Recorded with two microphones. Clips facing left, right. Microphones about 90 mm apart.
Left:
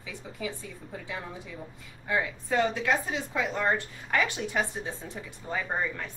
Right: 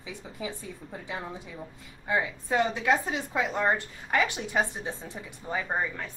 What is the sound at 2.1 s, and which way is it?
Speech, 15° right (ahead or behind).